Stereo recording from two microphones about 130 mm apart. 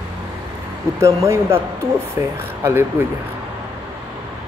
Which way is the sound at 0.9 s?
20° right (ahead or behind).